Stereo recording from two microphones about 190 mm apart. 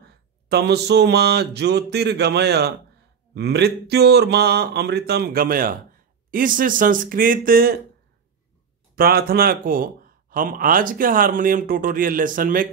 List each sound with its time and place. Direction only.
0.0 s a sound: 60° right (ahead or behind)
6.3 s speech: 45° right (ahead or behind)
8.9 s speech: 50° right (ahead or behind)